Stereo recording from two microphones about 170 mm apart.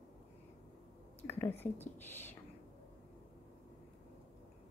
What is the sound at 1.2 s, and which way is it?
Speech, 10° left (ahead or behind).